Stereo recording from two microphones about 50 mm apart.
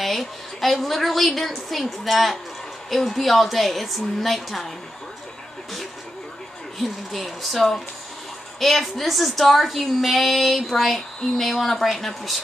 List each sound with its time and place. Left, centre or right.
0.0 s a woman's voice: centre
6.8 s a woman's voice: centre